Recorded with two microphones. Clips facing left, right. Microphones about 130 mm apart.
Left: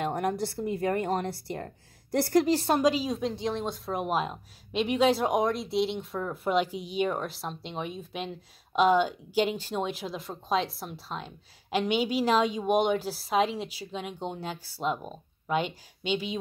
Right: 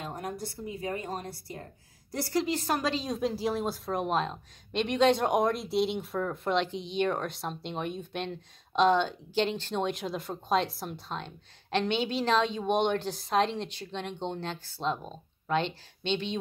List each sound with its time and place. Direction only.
0.0 s speech: 75° left (ahead or behind); by 2.4 s 60° left (ahead or behind)
2.4 s a woman's voice: 30° left (ahead or behind)
2.8 s a woman's voice: 10° left (ahead or behind)